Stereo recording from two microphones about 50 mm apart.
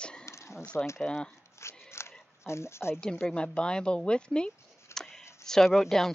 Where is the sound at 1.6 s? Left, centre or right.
Left.